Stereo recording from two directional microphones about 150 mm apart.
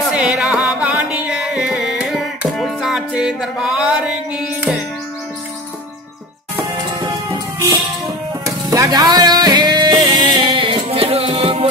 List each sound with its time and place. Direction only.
0.0 s music: 5° right (ahead or behind)
8.5 s music: 20° right (ahead or behind); by 11.7 s 40° right (ahead or behind)